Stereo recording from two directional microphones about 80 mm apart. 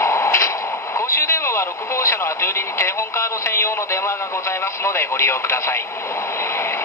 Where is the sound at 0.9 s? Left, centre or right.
Left.